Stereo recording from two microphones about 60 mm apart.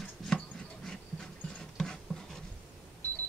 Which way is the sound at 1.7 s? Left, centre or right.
Centre.